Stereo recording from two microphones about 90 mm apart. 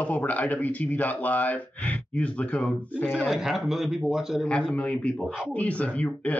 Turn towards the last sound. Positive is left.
turn(degrees=15)  # may be behind; listen again after turning